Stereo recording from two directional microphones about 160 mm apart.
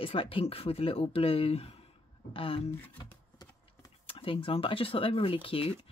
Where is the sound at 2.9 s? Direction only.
25° left (ahead or behind).